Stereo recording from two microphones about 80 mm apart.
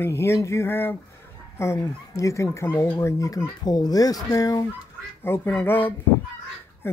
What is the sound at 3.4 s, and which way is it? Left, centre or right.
Speech, left.